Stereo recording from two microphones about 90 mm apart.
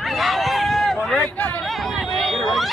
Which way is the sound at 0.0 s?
Centre (ahead or behind).